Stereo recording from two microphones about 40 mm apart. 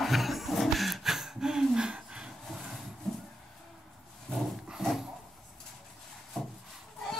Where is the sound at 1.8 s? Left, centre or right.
Right.